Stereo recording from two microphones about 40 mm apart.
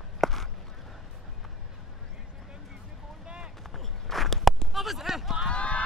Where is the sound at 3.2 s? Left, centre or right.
Right.